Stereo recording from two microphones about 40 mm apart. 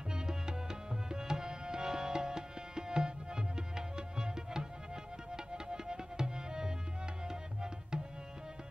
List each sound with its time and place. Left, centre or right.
0.1 s tabla: centre
5.3 s music: centre
7.2 s tabla: centre